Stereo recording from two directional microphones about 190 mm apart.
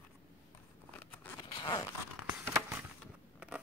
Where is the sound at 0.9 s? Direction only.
10° left (ahead or behind).